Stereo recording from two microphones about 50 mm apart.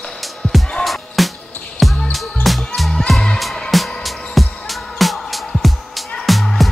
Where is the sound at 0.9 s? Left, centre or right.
Centre.